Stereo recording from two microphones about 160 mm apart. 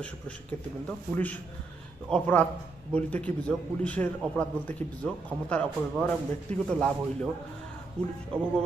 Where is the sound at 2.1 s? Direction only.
5° left (ahead or behind).